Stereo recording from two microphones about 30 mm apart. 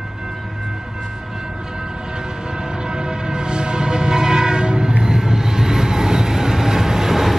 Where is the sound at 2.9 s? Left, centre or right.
Right.